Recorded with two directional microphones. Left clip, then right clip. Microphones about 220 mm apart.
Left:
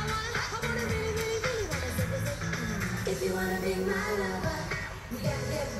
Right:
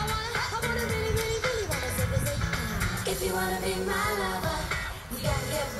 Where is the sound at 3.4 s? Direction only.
25° right (ahead or behind).